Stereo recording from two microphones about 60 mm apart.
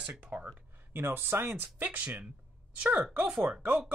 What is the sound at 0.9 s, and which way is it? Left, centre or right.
Speech, right.